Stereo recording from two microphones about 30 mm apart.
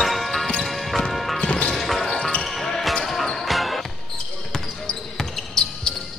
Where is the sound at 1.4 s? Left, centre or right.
Left.